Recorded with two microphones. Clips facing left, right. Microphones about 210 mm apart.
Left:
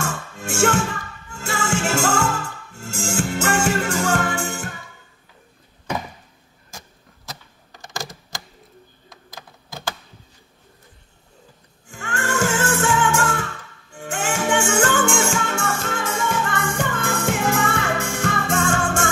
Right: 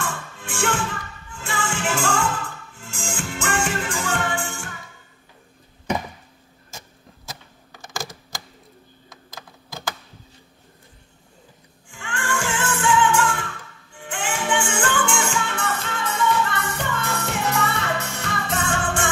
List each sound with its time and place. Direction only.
0.0 s music: 45° left (ahead or behind)
7.8 s typewriter: centre (ahead or behind)
11.9 s music: 45° left (ahead or behind)